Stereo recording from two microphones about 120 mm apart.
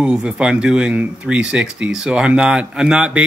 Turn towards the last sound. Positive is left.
turn(degrees=-10)  # may be behind; listen again after turning